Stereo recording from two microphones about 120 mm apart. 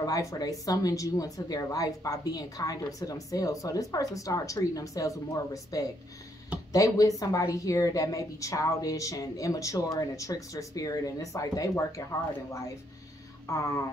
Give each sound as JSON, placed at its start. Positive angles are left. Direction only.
{"t": 0.0, "sound": "speech", "side_deg": 30}
{"t": 13.5, "sound": "speech", "side_deg": 25}